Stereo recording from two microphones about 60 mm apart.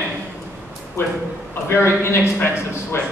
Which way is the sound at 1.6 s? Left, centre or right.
Left.